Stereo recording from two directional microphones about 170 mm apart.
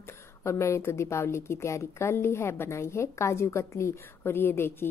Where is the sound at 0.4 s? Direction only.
15° left (ahead or behind).